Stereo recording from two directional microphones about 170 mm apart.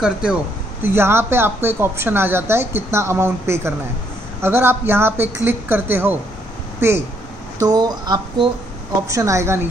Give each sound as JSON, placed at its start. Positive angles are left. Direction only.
{"t": 0.0, "sound": "a woman's voice", "side_deg": -5}